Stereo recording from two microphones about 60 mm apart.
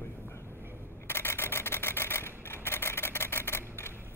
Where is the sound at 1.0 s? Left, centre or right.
Left.